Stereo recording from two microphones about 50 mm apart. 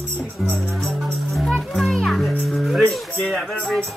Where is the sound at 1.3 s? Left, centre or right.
Centre.